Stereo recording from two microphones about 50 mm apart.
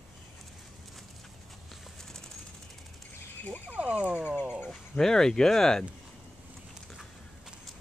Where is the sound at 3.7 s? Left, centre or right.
Right.